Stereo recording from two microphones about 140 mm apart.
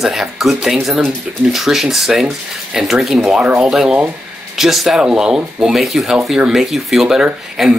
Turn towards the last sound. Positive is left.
turn(degrees=-5)  # may be behind; listen again after turning